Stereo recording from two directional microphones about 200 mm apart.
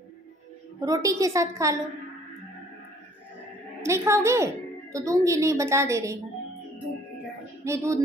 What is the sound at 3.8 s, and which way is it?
A woman's voice, 15° right (ahead or behind).